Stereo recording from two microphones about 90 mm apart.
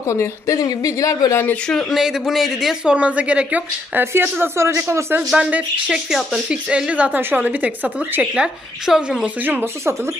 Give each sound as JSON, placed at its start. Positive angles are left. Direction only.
{"t": 0.0, "sound": "a woman's voice", "side_deg": 35}
{"t": 1.9, "sound": "speech", "side_deg": -5}
{"t": 5.3, "sound": "a woman's voice", "side_deg": -10}
{"t": 9.2, "sound": "speech", "side_deg": -20}